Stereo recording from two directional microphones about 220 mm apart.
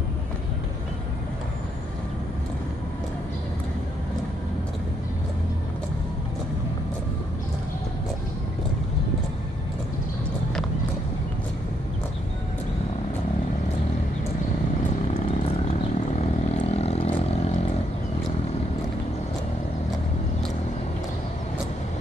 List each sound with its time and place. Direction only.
15.0 s vehicle: 25° left (ahead or behind)
16.6 s vehicle: 30° left (ahead or behind)